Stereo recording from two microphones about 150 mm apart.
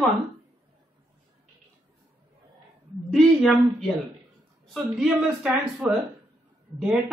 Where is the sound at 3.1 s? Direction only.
Centre (ahead or behind).